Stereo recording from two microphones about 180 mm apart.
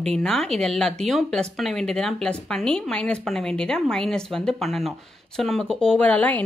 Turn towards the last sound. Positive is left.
turn(degrees=10)  # may be behind; listen again after turning